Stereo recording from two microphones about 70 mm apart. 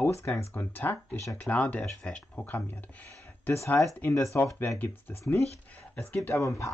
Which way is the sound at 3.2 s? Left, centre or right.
Left.